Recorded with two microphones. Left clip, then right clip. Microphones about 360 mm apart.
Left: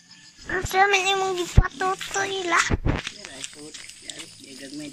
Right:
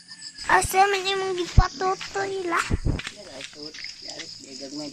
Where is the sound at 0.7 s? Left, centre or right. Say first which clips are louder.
Left 1 dB; centre.